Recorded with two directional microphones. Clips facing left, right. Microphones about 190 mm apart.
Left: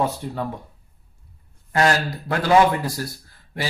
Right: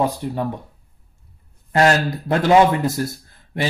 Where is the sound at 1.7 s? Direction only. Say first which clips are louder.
Right 3 dB; 25° right (ahead or behind).